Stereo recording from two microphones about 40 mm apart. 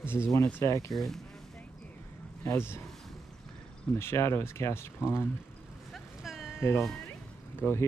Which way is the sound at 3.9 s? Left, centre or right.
Left.